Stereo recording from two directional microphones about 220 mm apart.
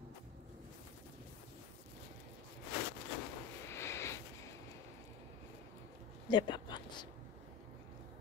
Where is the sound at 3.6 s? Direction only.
10° left (ahead or behind).